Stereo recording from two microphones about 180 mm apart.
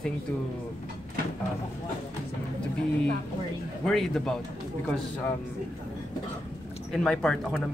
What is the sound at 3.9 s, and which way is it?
Speech, centre (ahead or behind).